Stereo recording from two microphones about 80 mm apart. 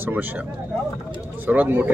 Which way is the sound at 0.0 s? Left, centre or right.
Right.